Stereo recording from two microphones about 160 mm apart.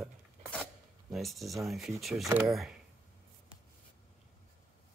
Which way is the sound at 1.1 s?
Centre (ahead or behind).